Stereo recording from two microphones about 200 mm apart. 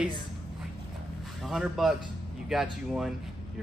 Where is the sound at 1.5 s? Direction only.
Centre (ahead or behind).